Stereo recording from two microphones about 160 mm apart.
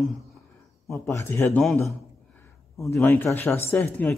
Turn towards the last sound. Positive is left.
turn(degrees=10)  # may be behind; listen again after turning